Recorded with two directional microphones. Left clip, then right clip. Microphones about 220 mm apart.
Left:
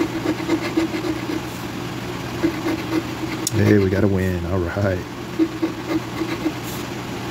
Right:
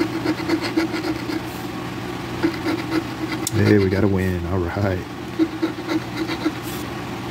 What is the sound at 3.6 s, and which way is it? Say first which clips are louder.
Speech: even; centre (ahead or behind).